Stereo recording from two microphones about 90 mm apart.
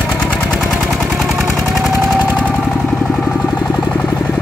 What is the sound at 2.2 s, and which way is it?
Vehicle, 10° left (ahead or behind).